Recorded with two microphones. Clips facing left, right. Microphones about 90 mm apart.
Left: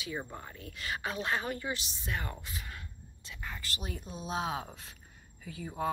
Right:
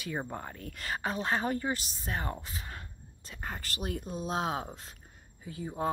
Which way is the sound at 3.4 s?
45° right (ahead or behind).